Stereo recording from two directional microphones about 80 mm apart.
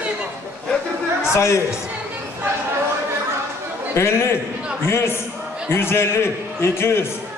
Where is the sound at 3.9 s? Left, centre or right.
Left.